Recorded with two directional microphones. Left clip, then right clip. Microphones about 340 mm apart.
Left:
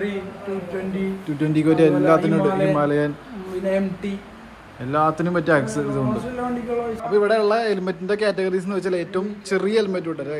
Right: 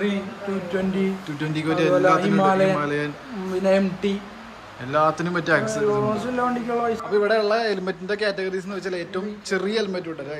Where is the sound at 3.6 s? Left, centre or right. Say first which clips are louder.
Right 3 dB; right.